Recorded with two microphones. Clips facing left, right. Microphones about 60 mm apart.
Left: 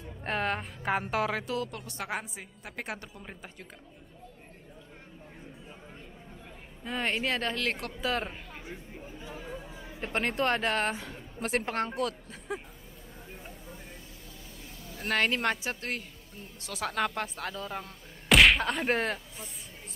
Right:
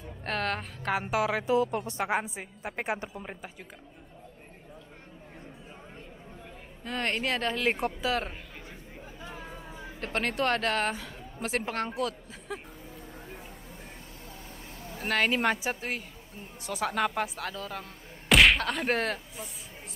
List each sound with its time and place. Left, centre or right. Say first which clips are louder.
0.2 s speech: even; centre
1.4 s a woman's voice: right 8 dB; right
6.8 s speech: even; centre
7.6 s a woman's voice: right 5 dB; centre
8.0 s speech: right 1 dB; centre
9.3 s chatter: left 3 dB; centre
9.9 s speech: even; centre
15.0 s a woman's voice: right 2 dB; centre
16.3 s a woman's voice: right 5 dB; centre
16.8 s speech: right 2 dB; centre
18.3 s whack: even; centre